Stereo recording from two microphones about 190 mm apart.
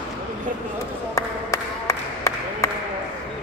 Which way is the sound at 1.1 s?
15° left (ahead or behind).